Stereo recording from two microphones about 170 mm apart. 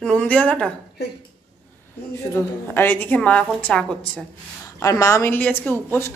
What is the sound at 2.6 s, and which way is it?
A woman's voice, 10° left (ahead or behind).